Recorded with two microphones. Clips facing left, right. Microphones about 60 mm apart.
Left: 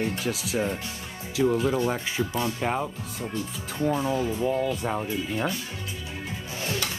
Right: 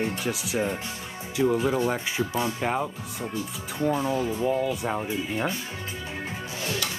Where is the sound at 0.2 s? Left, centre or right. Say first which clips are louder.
Even; centre.